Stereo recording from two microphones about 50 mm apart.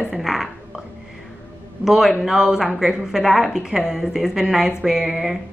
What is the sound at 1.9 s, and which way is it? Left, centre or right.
A woman's voice, centre.